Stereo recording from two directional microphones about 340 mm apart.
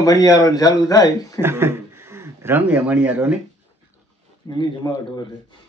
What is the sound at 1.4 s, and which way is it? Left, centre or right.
Speech, centre.